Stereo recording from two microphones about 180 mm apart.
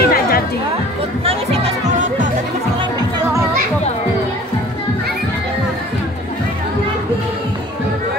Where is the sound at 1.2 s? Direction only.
35° right (ahead or behind).